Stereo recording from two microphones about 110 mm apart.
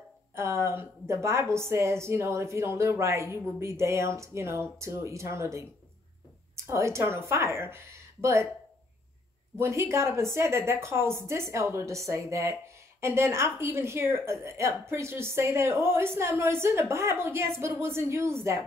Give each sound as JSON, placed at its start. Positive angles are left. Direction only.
{"t": 0.4, "sound": "a woman's voice", "side_deg": -25}
{"t": 9.6, "sound": "a woman's voice", "side_deg": -25}